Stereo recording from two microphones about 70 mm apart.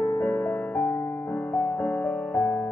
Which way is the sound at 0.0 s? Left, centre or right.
Left.